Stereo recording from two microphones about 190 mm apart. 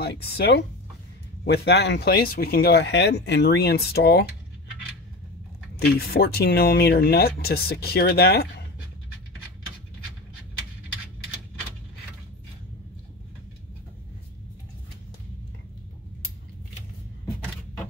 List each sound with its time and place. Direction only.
0.0 s speech: 60° left (ahead or behind)
5.9 s speech: 50° left (ahead or behind)